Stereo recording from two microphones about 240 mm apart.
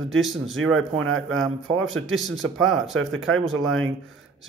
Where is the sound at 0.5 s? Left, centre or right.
Right.